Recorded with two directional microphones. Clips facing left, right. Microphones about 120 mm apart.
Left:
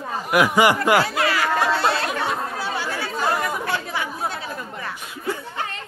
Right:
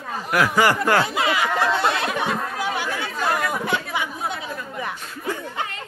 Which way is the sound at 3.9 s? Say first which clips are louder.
Even; 15° right (ahead or behind).